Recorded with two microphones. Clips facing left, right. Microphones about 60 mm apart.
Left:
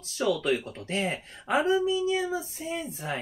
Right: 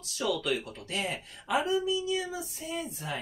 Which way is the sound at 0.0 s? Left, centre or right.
Left.